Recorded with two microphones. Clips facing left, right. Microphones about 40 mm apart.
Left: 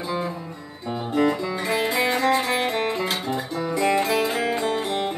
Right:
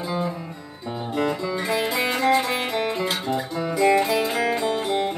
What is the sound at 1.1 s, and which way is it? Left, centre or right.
Music, centre.